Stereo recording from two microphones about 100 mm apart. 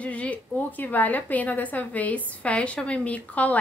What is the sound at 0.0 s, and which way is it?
Speech, 15° left (ahead or behind).